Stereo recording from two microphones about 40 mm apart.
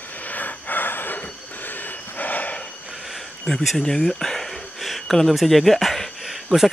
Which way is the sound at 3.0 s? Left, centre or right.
Centre.